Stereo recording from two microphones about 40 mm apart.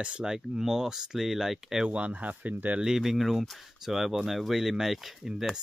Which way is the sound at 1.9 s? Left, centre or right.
Right.